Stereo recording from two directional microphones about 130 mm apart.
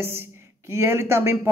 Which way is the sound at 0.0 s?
20° right (ahead or behind).